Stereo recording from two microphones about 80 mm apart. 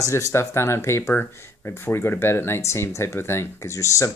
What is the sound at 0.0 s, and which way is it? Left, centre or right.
Speech, left.